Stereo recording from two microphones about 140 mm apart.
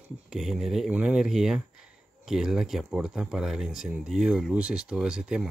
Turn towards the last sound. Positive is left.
turn(degrees=-5)  # may be behind; listen again after turning